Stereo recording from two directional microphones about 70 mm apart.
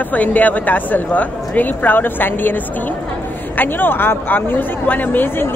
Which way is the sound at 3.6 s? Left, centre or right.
Left.